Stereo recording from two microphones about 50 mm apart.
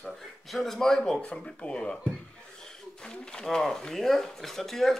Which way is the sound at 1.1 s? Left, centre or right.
Left.